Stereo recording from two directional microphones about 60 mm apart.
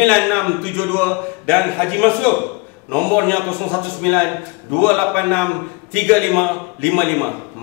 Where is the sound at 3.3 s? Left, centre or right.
Left.